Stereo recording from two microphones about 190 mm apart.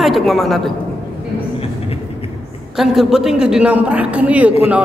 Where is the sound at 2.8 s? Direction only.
Centre (ahead or behind).